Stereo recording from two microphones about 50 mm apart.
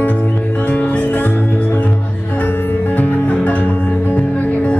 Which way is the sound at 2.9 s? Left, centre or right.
Left.